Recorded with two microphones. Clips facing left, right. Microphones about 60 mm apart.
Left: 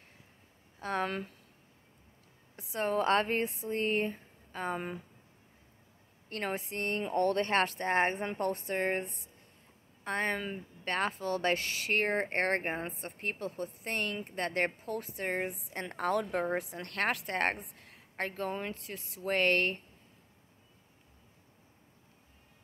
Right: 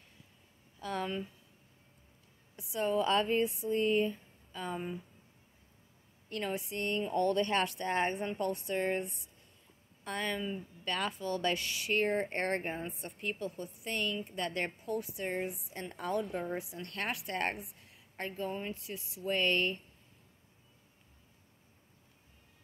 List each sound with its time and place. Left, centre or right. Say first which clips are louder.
0.7 s speech: left 3 dB; left
1.0 s speech: left 2 dB; left
2.5 s a woman's voice: even; left
3.4 s speech: right 2 dB; left
3.7 s speech: right 2 dB; left
6.2 s a woman's voice: left 1 dB; left
9.0 s speech: right 1 dB; left
11.9 s a woman's voice: left 1 dB; left
18.8 s a woman's voice: even; left